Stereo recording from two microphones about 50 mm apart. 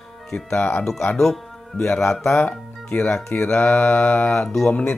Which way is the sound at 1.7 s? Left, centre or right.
Left.